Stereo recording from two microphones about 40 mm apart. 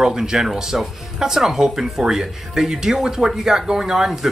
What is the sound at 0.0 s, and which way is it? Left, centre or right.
Speech, centre.